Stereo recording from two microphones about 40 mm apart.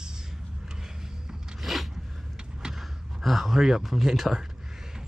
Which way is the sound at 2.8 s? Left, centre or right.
Centre.